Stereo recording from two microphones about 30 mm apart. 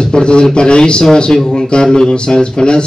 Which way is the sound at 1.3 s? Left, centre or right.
Left.